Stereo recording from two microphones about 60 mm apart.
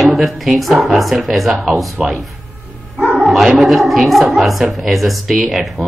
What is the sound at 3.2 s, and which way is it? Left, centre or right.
A woman's voice, centre.